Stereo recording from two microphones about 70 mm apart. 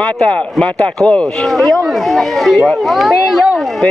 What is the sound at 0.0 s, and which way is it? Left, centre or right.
Speech, centre.